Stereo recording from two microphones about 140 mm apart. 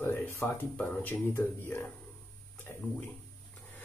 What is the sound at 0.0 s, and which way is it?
Speech, 20° left (ahead or behind).